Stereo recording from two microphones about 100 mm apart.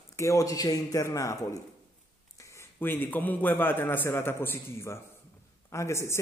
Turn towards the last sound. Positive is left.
turn(degrees=25)  # may be behind; listen again after turning